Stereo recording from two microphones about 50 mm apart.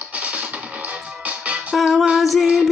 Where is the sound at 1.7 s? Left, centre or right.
Centre.